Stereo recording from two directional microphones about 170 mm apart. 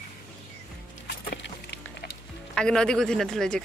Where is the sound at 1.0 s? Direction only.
85° left.